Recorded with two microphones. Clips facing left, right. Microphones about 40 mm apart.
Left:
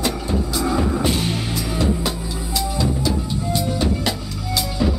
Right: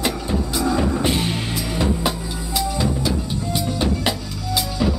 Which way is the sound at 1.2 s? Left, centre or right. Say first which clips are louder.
Even; centre.